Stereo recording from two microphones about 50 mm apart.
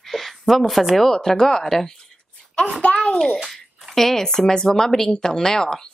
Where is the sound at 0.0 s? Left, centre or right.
Centre.